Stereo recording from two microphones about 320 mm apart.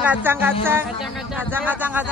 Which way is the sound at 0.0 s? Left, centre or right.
Centre.